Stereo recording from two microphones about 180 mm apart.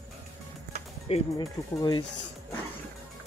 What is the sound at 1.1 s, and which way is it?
Speech, 30° left (ahead or behind).